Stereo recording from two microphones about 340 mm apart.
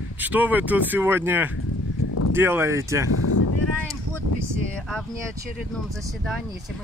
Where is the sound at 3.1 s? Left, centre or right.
Left.